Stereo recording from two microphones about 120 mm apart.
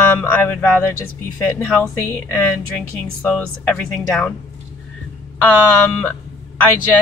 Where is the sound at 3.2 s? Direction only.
15° left (ahead or behind).